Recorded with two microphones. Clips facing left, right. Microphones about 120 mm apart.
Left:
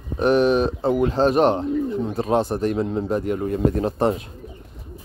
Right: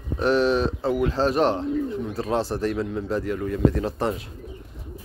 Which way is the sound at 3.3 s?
30° left (ahead or behind).